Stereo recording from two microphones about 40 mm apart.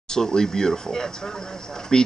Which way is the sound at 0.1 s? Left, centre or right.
Centre.